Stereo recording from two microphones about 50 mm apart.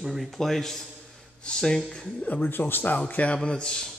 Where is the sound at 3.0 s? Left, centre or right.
Left.